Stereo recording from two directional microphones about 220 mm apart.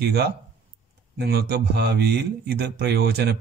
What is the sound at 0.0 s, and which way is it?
A man's voice, 45° right (ahead or behind).